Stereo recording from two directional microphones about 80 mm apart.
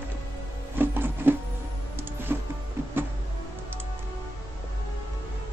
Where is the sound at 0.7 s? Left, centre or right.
Right.